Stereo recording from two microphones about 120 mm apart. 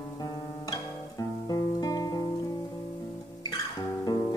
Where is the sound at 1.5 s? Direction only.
30° left (ahead or behind).